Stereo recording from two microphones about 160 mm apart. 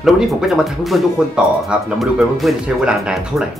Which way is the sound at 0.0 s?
Centre (ahead or behind).